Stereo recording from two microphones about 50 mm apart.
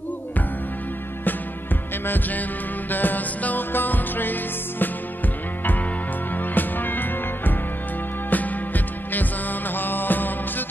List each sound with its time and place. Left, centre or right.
2.0 s music: left
6.3 s music: left